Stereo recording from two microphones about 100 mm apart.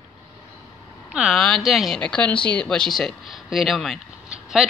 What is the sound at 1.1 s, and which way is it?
Speech, 5° right (ahead or behind).